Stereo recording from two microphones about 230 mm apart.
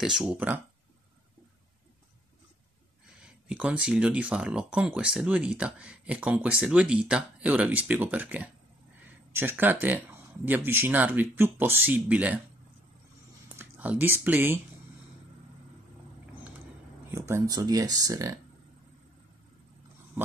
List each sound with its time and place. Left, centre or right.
0.0 s speech: centre
3.4 s speech: centre
13.5 s speech: centre
17.1 s speech: centre